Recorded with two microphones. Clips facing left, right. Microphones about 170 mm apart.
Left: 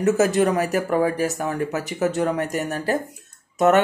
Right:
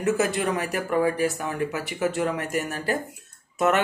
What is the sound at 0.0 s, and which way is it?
Speech, 40° left (ahead or behind).